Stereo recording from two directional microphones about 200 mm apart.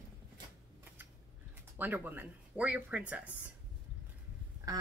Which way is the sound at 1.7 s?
10° right (ahead or behind).